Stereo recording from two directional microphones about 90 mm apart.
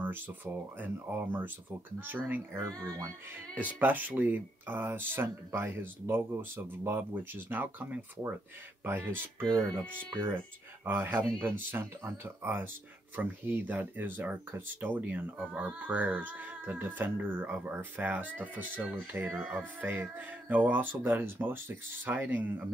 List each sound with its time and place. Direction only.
0.0 s speech: 20° right (ahead or behind)
2.8 s speech: 40° right (ahead or behind)
3.5 s speech: 20° right (ahead or behind)
10.9 s speech: 25° right (ahead or behind)